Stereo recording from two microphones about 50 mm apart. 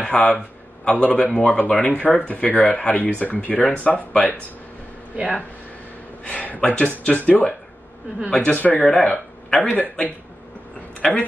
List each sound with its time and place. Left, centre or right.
0.0 s a man's voice: left
5.1 s speech: right
6.2 s speech: left
8.5 s speech: left
9.5 s speech: centre
11.0 s speech: centre